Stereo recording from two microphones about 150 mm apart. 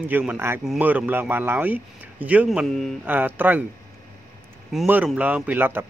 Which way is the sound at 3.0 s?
10° right (ahead or behind).